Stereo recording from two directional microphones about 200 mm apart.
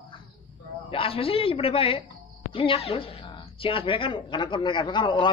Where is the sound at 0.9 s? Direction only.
25° left (ahead or behind).